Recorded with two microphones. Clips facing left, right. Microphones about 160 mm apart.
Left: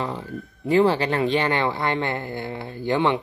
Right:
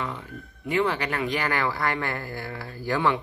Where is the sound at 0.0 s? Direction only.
30° left (ahead or behind).